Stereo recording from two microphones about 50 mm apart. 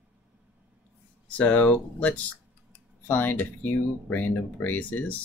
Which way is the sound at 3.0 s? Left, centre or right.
Left.